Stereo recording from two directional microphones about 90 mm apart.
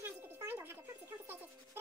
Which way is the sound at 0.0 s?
25° right (ahead or behind).